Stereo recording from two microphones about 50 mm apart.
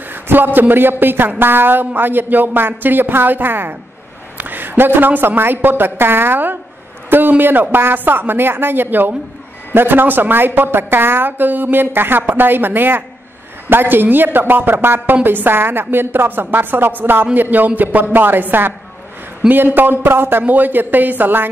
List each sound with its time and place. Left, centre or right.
0.1 s a man's voice: right
20.4 s a woman's voice: right